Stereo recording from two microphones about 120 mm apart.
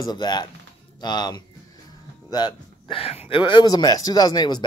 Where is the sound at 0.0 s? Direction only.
35° left (ahead or behind).